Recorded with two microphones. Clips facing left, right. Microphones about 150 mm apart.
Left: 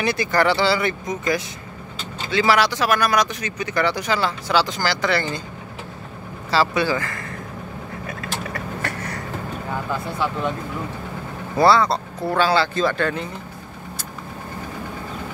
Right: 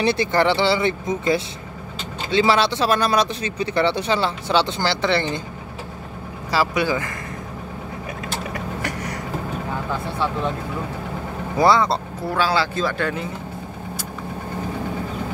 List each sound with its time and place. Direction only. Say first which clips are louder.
0.0 s speech: right 1 dB; 30° right (ahead or behind)
6.5 s speech: left 1 dB; 10° right (ahead or behind)
8.2 s vehicle: right 1 dB; 15° right (ahead or behind)
11.5 s speech: left 1 dB; 15° right (ahead or behind)
12.4 s speech: left 2 dB; 5° right (ahead or behind)